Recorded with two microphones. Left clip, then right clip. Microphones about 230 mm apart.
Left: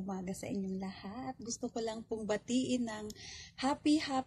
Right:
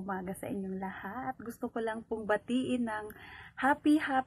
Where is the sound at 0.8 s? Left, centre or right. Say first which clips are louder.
Right 6 dB; right.